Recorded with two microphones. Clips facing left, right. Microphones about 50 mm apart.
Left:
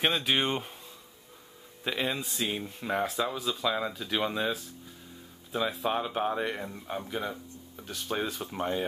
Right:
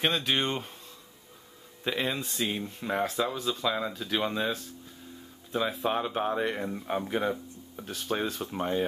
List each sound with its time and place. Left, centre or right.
0.0 s speech: centre
1.9 s speech: centre
6.9 s speech: right
7.7 s speech: centre